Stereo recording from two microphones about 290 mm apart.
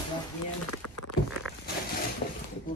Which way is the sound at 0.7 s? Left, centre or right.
Left.